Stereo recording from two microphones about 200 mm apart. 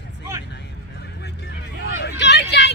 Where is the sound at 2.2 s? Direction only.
60° left (ahead or behind).